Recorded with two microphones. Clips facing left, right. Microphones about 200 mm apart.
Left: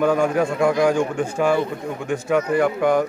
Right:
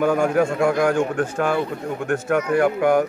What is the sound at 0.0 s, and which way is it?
Speech, 10° right (ahead or behind).